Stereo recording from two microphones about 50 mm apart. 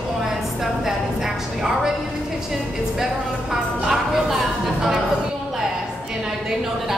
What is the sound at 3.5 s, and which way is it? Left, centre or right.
Music, centre.